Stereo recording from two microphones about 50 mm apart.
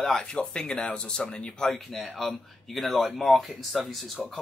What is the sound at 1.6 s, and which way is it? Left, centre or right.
Speech, centre.